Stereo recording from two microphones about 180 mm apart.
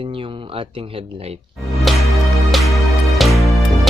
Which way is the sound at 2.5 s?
Centre (ahead or behind).